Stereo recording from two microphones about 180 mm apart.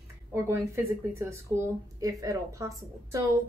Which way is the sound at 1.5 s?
20° right (ahead or behind).